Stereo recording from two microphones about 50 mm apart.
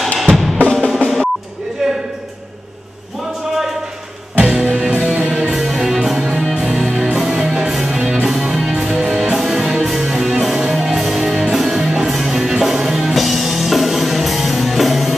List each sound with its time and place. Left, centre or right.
0.8 s drum: centre
1.8 s a sound: centre
4.4 s music: centre
5.5 s music: centre